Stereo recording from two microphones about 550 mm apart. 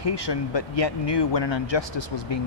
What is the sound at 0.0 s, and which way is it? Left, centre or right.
Speech, left.